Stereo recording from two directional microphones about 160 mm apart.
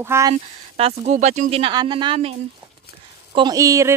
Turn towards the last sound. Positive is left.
turn(degrees=-20)  # may be behind; listen again after turning